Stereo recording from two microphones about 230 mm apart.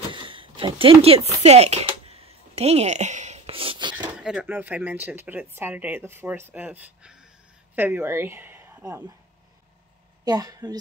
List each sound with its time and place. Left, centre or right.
0.1 s a sound: right
4.1 s a woman's voice: centre
10.2 s speech: centre